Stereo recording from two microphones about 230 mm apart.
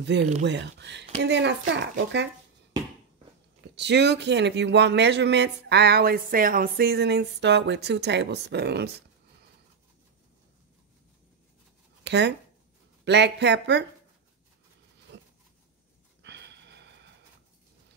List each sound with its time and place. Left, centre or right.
0.0 s speech: right
3.7 s speech: right
12.0 s speech: right
15.1 s a sound: right